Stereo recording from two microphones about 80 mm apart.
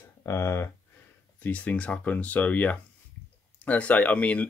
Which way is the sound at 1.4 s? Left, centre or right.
Centre.